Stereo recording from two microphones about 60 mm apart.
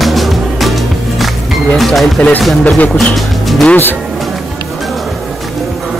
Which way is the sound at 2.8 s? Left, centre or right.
Left.